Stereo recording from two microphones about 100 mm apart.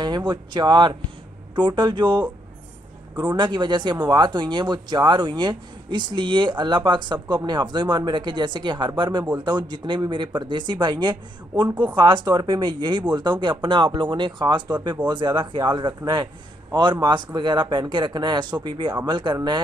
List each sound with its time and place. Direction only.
0.0 s speech: 50° right (ahead or behind)